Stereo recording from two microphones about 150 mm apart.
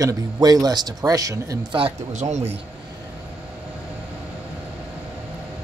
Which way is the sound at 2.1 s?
50° right (ahead or behind).